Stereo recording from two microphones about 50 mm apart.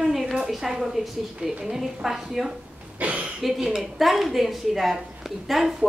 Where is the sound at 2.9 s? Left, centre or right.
Right.